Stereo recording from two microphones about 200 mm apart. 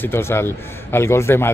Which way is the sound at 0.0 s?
10° left (ahead or behind).